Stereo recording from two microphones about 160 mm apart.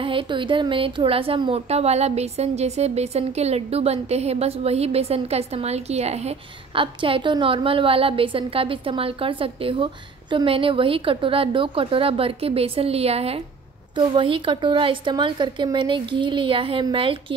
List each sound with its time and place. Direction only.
0.0 s a woman's voice: 30° right (ahead or behind)